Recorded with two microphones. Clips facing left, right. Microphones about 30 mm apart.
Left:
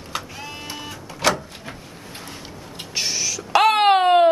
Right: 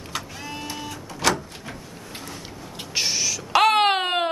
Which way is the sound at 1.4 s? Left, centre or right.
Centre.